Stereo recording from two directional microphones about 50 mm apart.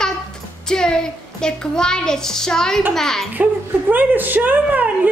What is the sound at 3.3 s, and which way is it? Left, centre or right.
Speech, right.